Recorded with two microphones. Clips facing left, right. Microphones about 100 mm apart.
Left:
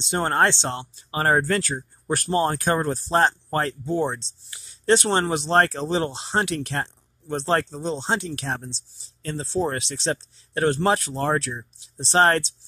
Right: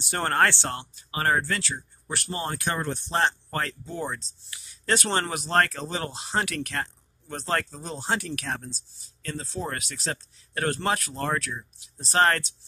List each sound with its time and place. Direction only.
0.0 s speech: 25° left (ahead or behind)